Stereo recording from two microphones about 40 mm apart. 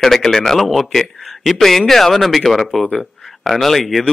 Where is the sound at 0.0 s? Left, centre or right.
Centre.